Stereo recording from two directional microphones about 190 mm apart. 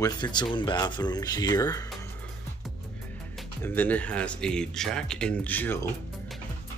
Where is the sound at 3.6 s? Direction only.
10° left (ahead or behind).